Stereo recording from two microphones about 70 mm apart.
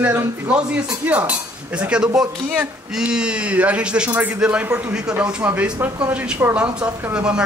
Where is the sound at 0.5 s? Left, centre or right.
Centre.